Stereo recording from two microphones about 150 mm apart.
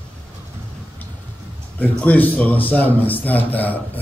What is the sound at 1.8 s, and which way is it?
A man's voice, 10° left (ahead or behind).